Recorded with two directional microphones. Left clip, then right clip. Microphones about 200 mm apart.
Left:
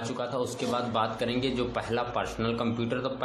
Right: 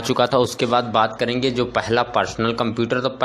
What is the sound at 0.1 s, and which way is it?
A man's voice, 35° right (ahead or behind).